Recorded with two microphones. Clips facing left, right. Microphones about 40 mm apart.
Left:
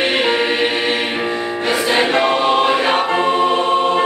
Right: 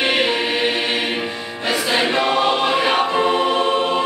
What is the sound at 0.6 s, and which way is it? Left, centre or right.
Choir, centre.